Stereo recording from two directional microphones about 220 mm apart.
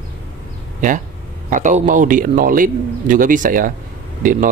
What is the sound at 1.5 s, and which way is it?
Speech, 35° right (ahead or behind).